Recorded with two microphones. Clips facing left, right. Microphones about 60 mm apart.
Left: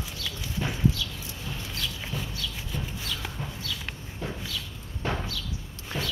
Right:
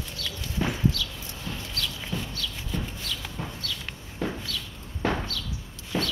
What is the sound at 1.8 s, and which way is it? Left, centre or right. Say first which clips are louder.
Shuffle: right 2 dB; centre.